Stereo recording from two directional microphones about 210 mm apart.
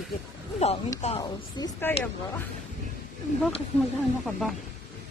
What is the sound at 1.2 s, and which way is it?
Speech, 15° left (ahead or behind).